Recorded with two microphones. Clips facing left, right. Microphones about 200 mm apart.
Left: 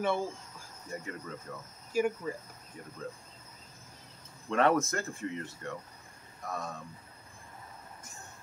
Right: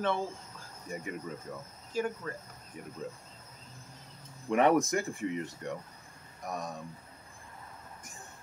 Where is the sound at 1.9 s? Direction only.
10° left (ahead or behind).